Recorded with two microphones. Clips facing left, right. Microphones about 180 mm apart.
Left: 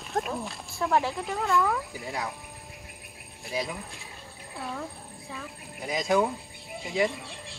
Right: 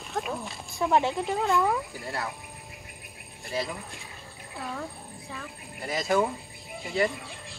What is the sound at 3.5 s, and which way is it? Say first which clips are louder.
Speech: even; centre (ahead or behind).